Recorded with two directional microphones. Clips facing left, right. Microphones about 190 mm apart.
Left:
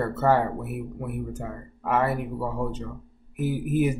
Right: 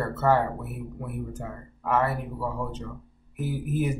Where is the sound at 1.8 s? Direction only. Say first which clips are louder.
Left 1 dB; 15° left (ahead or behind).